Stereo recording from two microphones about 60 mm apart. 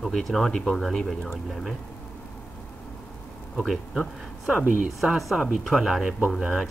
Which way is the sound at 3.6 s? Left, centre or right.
Centre.